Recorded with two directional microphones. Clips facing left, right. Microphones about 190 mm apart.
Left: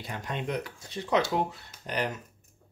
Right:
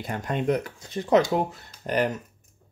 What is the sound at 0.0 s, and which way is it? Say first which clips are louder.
Speech: right 7 dB; 50° right (ahead or behind).